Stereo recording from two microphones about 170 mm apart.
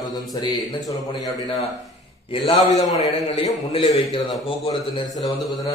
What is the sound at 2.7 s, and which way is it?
Speech, 35° left (ahead or behind).